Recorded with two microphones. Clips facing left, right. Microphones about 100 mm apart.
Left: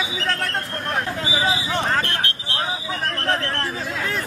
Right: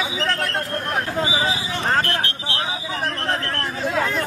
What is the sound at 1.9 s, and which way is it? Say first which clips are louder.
Vehicle: right 2 dB; 40° right (ahead or behind).